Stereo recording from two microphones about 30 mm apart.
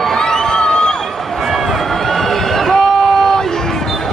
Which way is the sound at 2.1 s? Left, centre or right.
Centre.